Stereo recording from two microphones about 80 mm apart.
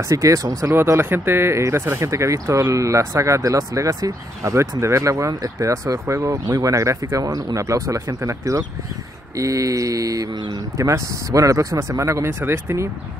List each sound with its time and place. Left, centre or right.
0.1 s mantra: right
0.7 s speech: right
9.4 s mantra: right
10.3 s speech: right
10.8 s speech: right